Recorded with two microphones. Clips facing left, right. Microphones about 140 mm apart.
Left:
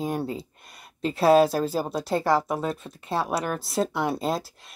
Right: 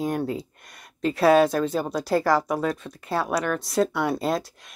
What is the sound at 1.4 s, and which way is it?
Speech, 35° left (ahead or behind).